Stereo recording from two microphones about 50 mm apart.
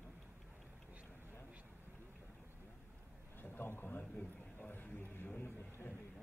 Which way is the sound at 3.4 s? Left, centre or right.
Left.